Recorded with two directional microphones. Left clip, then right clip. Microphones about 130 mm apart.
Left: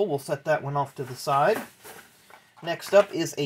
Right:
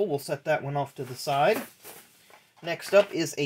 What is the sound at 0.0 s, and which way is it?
Speech, 20° right (ahead or behind).